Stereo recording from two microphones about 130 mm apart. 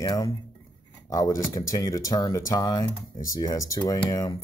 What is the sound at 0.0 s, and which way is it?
Speech, 30° left (ahead or behind).